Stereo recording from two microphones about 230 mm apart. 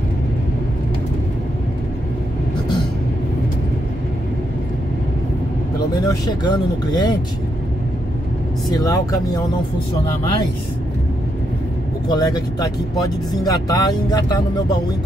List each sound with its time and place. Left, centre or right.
6.0 s speech: centre
8.6 s speech: centre
12.1 s speech: centre